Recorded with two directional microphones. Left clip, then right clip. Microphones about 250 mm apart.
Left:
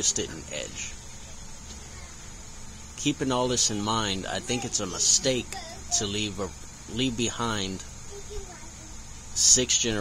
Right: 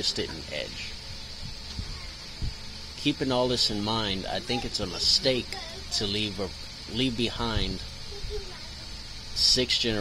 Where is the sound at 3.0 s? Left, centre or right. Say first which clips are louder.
Even; centre.